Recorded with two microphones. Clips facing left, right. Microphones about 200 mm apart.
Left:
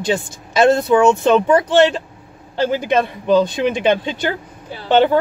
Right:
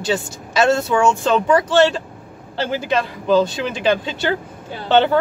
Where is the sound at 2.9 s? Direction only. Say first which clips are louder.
Left 1 dB; 20° left (ahead or behind).